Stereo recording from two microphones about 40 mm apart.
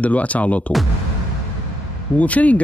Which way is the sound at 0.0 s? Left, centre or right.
Left.